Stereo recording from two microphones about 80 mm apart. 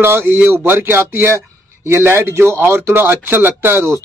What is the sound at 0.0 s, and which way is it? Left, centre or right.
Speech, right.